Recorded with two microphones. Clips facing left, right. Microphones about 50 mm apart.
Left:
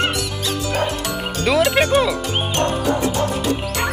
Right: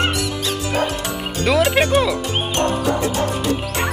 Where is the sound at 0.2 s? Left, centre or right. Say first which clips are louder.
Right 1 dB; right.